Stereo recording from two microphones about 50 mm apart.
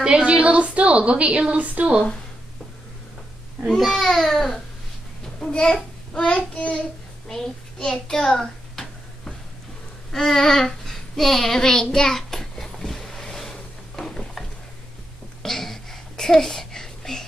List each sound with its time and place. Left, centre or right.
0.0 s a woman's voice: centre
3.7 s a child's voice: centre
6.1 s child singing: centre
7.2 s a sound: centre
10.1 s child singing: centre
15.4 s a sound: centre